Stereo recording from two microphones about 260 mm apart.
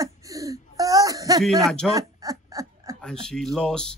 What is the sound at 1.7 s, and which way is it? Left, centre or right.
Speech, centre.